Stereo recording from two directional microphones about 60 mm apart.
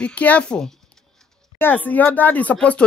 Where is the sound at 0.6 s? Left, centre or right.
Centre.